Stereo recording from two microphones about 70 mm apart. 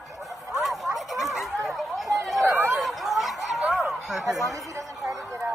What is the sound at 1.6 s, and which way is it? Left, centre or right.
Chatter, centre.